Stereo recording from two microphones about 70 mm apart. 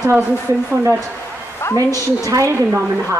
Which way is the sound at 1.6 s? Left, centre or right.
Left.